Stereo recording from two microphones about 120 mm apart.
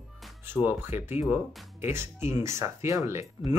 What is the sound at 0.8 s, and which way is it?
Speech, 20° right (ahead or behind).